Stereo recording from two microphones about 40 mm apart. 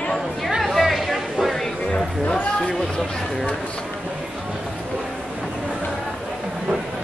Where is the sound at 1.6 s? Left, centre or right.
Centre.